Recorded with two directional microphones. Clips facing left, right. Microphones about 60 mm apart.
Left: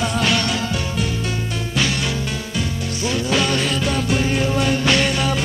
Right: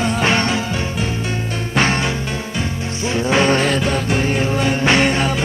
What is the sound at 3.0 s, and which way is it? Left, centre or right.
Music, right.